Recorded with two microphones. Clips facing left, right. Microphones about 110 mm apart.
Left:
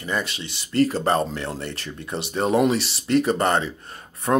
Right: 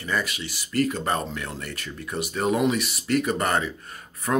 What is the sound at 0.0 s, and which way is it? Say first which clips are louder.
Speech: left 1 dB; 25° left (ahead or behind).